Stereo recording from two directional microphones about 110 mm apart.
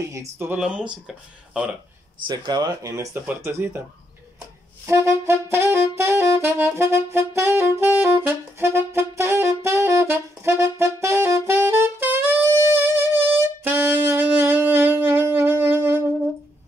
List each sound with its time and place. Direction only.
0.1 s music: 25° right (ahead or behind)
0.6 s speech: 10° right (ahead or behind)
2.2 s speech: 40° right (ahead or behind)
2.7 s music: 30° right (ahead or behind)
4.8 s music: 25° right (ahead or behind)
5.7 s saxophone: 25° right (ahead or behind)